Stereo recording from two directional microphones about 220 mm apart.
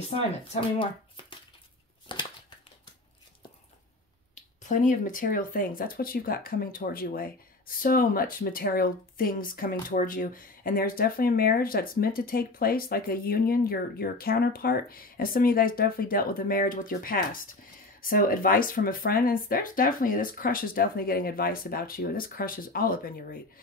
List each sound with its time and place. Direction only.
0.5 s speech: 20° left (ahead or behind)
2.1 s a sound: 20° left (ahead or behind)
4.4 s speech: 35° left (ahead or behind)